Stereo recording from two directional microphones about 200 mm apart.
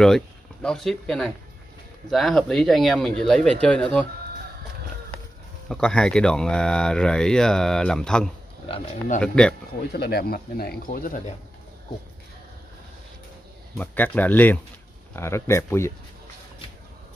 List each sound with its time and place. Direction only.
0.0 s speech: 5° left (ahead or behind)
5.7 s speech: 5° left (ahead or behind)
8.6 s speech: 25° left (ahead or behind)
9.2 s speech: 5° left (ahead or behind)
9.9 s speech: 50° left (ahead or behind)
13.7 s speech: 10° left (ahead or behind)